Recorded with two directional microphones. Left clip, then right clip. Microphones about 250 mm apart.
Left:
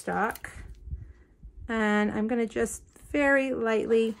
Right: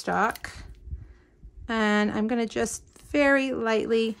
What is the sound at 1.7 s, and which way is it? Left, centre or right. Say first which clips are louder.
A woman's voice: right 2 dB; centre.